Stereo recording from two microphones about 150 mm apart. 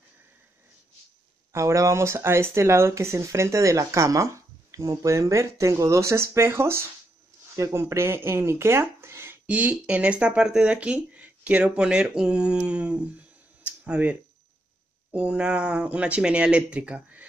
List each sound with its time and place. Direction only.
1.5 s speech: 20° right (ahead or behind)
13.7 s a sound: 10° right (ahead or behind)
15.0 s speech: 5° right (ahead or behind)